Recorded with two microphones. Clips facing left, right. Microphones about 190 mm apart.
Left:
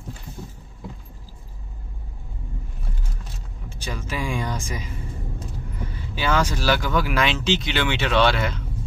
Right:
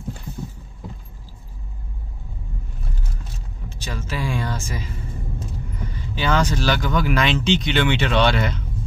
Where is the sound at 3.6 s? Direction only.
10° left (ahead or behind).